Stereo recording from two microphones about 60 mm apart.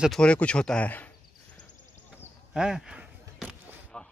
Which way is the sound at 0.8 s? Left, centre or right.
Left.